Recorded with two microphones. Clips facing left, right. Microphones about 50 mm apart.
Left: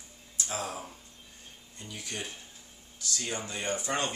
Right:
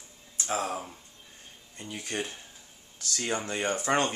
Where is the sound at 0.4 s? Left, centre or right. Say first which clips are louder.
Right 5 dB; right.